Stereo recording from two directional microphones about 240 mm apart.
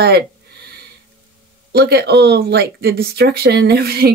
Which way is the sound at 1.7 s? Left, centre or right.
Right.